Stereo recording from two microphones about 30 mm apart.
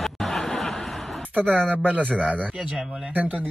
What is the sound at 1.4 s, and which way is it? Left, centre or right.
Speech, right.